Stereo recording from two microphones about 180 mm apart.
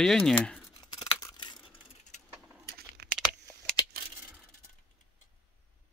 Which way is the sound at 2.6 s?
65° right (ahead or behind).